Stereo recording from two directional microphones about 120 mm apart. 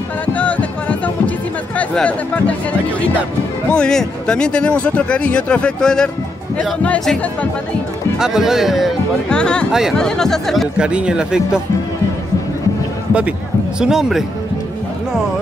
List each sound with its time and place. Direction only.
0.3 s music: 10° left (ahead or behind)
1.8 s speech: 10° left (ahead or behind)
3.7 s speech: 5° left (ahead or behind)
8.2 s speech: 5° right (ahead or behind)
9.7 s speech: 5° right (ahead or behind)
13.7 s speech: 5° right (ahead or behind)